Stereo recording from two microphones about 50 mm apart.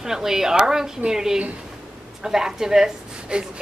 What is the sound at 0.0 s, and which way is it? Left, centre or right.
A woman's voice, centre.